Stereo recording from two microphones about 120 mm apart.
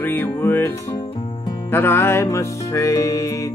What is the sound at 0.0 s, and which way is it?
Music, 15° left (ahead or behind).